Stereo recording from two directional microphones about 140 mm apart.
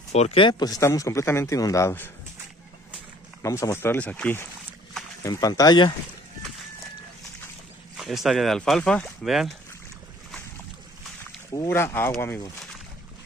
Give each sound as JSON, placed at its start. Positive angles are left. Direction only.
{"t": 0.1, "sound": "speech", "side_deg": 45}
{"t": 3.4, "sound": "speech", "side_deg": 20}
{"t": 5.2, "sound": "speech", "side_deg": 25}
{"t": 8.0, "sound": "speech", "side_deg": 0}
{"t": 11.5, "sound": "speech", "side_deg": 20}